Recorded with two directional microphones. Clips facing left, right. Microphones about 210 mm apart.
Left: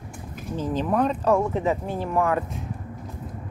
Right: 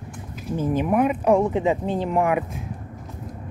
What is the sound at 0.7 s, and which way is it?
Speech, 10° right (ahead or behind).